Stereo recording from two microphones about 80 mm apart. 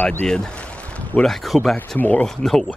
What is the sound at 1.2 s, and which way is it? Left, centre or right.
Speech, centre.